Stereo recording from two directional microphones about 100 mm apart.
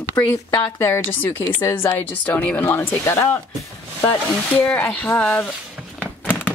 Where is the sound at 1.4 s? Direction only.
30° left (ahead or behind).